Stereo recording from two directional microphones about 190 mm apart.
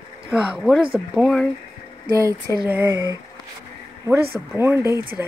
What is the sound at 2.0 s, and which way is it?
Speech, 20° right (ahead or behind).